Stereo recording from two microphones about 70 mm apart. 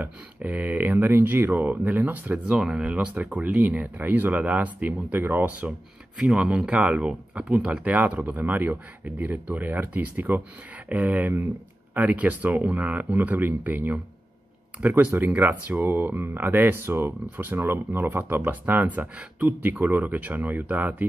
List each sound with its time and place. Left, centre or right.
0.0 s speech: right
2.3 s speech: centre
12.2 s speech: right